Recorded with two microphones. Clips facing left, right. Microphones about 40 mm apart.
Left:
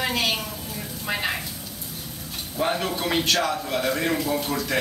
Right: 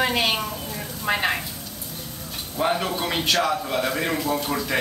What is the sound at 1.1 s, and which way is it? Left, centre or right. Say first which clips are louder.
Speech: right 4 dB; centre.